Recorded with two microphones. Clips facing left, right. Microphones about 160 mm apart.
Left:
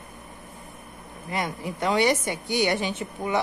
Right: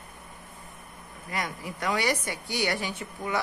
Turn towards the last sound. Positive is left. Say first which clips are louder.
# left 4 dB
turn(degrees=20)  # may be behind; listen again after turning